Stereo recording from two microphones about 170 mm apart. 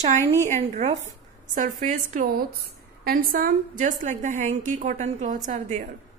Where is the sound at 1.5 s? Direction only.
50° right (ahead or behind).